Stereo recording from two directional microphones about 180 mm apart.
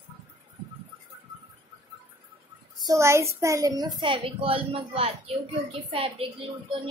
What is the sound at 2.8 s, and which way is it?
A child's voice, 15° right (ahead or behind).